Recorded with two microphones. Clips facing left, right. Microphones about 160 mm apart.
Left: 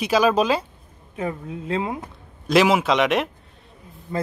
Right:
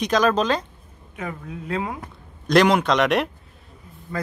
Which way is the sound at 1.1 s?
30° left (ahead or behind).